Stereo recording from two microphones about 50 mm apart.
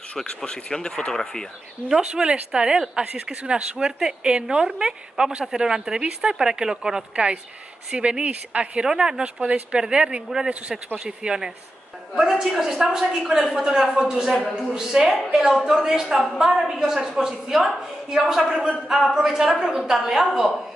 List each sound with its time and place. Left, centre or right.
0.2 s speech: centre
1.9 s a woman's voice: centre
8.8 s a woman's voice: centre
20.2 s speech: centre